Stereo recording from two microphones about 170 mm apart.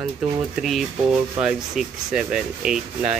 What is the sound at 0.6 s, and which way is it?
Speech, centre (ahead or behind).